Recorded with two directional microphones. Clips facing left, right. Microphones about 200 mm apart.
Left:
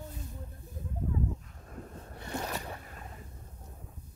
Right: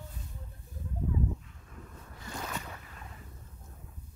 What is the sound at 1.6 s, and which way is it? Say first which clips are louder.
Boat: left 5 dB; 45° left (ahead or behind).